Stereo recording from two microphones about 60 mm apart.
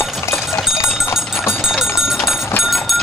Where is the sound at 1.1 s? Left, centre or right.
Centre.